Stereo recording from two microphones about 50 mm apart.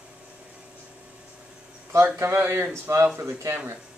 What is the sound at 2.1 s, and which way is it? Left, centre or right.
Speech, right.